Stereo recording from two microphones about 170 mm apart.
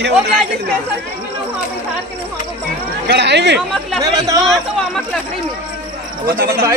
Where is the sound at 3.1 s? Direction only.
90° right.